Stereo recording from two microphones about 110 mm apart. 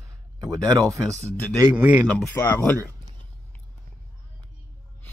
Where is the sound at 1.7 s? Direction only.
10° right (ahead or behind).